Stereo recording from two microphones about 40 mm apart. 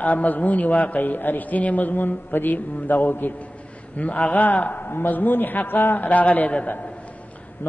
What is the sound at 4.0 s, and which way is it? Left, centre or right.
A man's voice, left.